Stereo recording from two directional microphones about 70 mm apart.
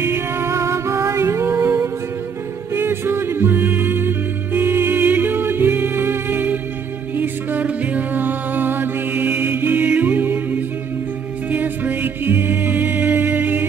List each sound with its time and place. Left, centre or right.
0.0 s music: right
9.4 s mantra: right
9.8 s music: centre